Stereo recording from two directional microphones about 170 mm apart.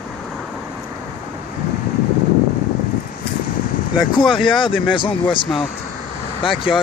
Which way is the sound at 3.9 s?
25° left (ahead or behind).